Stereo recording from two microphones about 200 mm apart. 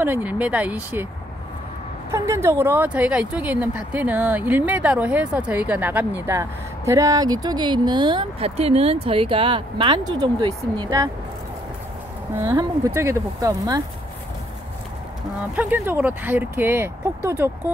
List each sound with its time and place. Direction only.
0.0 s speech: 10° right (ahead or behind)
2.0 s speech: 15° right (ahead or behind)
12.4 s speech: 15° right (ahead or behind)
15.5 s speech: 10° right (ahead or behind)